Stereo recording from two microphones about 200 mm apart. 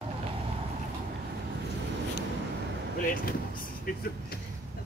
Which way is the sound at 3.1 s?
45° left (ahead or behind).